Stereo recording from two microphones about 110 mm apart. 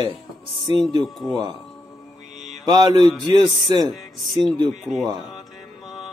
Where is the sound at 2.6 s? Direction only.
40° right (ahead or behind).